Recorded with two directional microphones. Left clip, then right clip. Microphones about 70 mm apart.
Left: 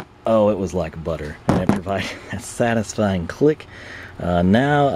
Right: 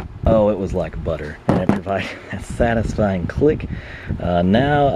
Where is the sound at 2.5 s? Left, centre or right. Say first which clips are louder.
Right 1 dB; centre.